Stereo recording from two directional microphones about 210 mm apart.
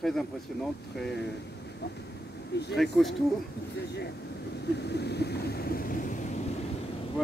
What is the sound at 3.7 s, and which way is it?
Vehicle, 50° left (ahead or behind).